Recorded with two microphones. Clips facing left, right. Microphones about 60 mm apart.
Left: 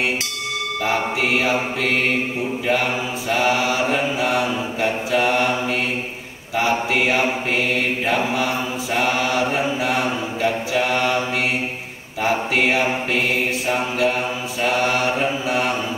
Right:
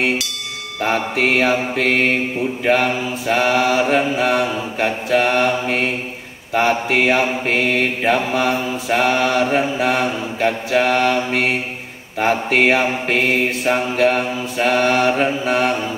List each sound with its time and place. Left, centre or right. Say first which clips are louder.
0.8 s mantra: right 3 dB; right
3.3 s mantra: right 3 dB; right
12.2 s mantra: right 3 dB; right